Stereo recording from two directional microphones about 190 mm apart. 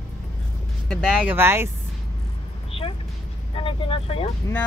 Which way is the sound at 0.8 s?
5° left (ahead or behind).